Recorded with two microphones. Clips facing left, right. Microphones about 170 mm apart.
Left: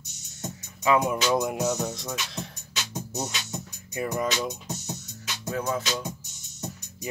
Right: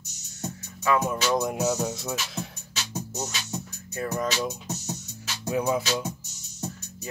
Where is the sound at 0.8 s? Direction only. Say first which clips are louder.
Left 2 dB; 20° left (ahead or behind).